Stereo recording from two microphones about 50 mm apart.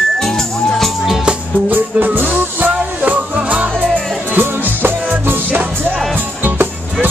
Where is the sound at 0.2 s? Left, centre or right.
Centre.